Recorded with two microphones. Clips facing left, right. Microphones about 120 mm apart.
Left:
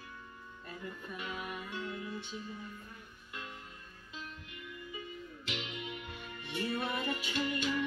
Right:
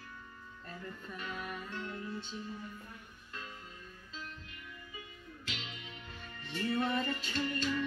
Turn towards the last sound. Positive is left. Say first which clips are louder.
# left 1 dB
turn(degrees=15)  # may be behind; listen again after turning